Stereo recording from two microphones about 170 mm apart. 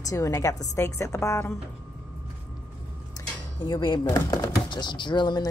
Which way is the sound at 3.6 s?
25° left (ahead or behind).